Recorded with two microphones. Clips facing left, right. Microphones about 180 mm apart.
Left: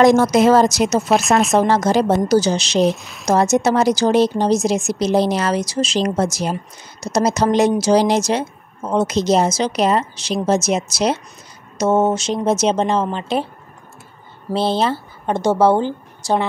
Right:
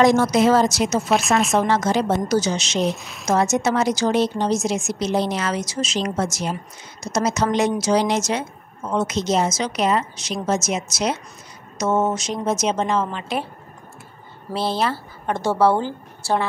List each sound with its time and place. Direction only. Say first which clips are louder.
0.0 s a woman's voice: left 4 dB; 45° left (ahead or behind)
1.1 s speech: left 3 dB; centre (ahead or behind)
1.5 s speech: left 4 dB; 35° left (ahead or behind)
2.8 s speech: left 7 dB; centre (ahead or behind)
3.3 s speech: left 4 dB; 35° left (ahead or behind)
14.5 s a woman's voice: left 4 dB; 25° left (ahead or behind)